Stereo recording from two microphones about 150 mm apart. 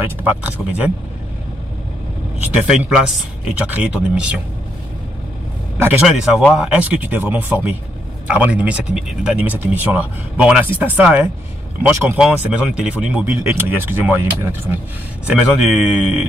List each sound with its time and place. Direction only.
0.0 s speech: 10° right (ahead or behind)
2.4 s speech: 5° right (ahead or behind)
5.8 s speech: 10° right (ahead or behind)
15.2 s speech: centre (ahead or behind)